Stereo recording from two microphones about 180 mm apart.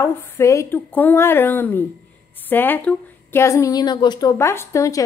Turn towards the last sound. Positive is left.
turn(degrees=15)  # may be behind; listen again after turning